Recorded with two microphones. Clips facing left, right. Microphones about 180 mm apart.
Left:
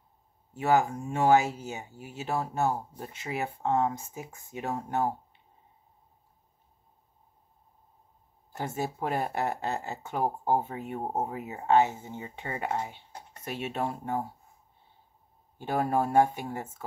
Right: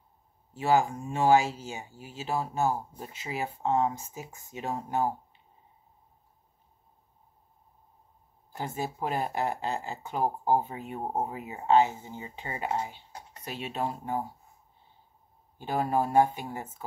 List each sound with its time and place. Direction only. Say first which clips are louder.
0.6 s speech: even; 55° left (ahead or behind)
8.5 s speech: left 1 dB; 55° left (ahead or behind)
15.6 s speech: even; 55° left (ahead or behind)